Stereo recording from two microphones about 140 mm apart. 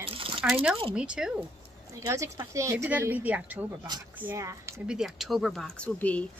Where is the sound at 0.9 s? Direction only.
5° right (ahead or behind).